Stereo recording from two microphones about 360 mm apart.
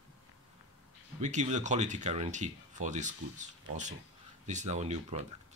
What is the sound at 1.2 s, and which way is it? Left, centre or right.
Speech, centre.